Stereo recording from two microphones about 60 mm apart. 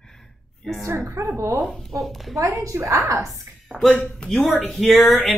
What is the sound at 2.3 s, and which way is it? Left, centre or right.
Speech, right.